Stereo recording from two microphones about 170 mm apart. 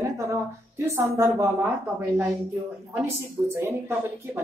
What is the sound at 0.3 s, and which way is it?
A woman's voice, 15° right (ahead or behind).